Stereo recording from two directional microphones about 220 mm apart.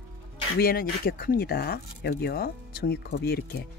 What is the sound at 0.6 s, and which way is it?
Speech, 45° left (ahead or behind).